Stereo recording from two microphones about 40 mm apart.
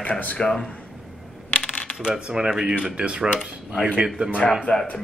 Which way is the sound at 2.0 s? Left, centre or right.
Right.